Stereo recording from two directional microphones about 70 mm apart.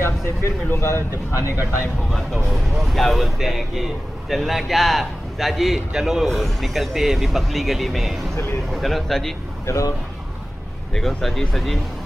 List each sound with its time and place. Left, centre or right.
0.0 s speech: left
2.0 s speech: centre
9.7 s speech: left
11.0 s speech: centre